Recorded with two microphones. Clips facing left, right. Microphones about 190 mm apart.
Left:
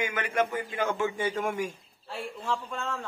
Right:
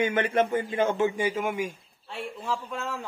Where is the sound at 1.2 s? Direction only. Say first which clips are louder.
Right 2 dB; 5° right (ahead or behind).